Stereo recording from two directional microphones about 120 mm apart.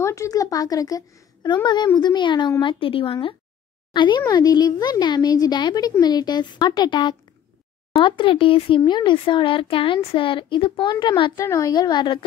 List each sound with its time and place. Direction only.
0.0 s speech: 25° left (ahead or behind); by 11.3 s 40° left (ahead or behind)
11.3 s a woman's voice: 25° left (ahead or behind)
11.7 s speech: 40° left (ahead or behind)